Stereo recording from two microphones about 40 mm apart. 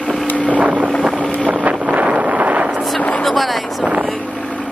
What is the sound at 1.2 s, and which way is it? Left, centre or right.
Boat, left.